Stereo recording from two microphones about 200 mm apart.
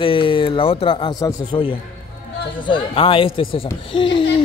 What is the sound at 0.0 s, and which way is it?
Speech, 25° left (ahead or behind).